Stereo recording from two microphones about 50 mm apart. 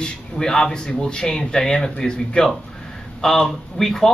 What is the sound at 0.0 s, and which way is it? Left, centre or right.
Speech, centre.